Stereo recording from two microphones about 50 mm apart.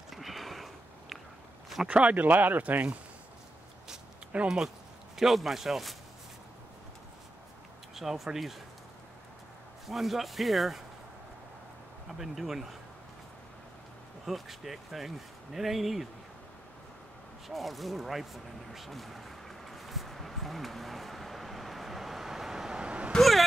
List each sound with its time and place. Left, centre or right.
0.1 s sniff: centre
1.9 s speech: right
4.3 s speech: right
5.1 s speech: centre
7.9 s speech: centre
9.8 s speech: centre
12.1 s speech: centre
14.2 s speech: centre
17.5 s a sound: centre; by 23.1 s right
23.1 s vehicle: centre